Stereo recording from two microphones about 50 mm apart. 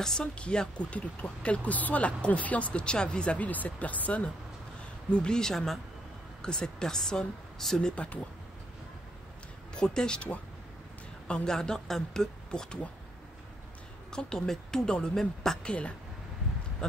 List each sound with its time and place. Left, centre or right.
0.2 s speech: left
5.1 s speech: centre
7.9 s speech: left
9.8 s a woman's voice: centre
14.1 s speech: centre
15.6 s speech: left